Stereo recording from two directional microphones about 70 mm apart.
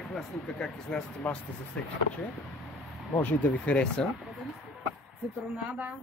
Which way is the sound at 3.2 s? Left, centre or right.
Left.